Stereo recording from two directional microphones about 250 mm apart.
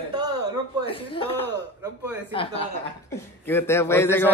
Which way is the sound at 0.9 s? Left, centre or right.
Left.